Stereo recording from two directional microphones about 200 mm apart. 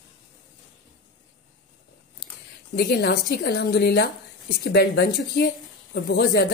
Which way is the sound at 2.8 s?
55° left (ahead or behind).